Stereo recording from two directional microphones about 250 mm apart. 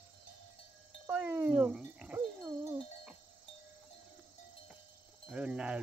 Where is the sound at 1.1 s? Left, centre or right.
Centre.